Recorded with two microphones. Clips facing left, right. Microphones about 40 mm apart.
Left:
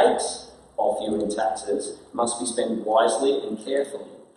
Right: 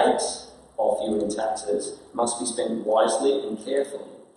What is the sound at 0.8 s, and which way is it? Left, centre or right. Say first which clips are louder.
Speech: right 1 dB; centre.